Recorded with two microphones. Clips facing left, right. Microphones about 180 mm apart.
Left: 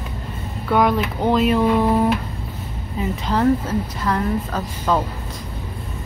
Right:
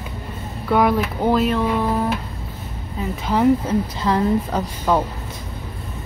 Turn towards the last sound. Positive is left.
turn(degrees=-15)  # may be behind; listen again after turning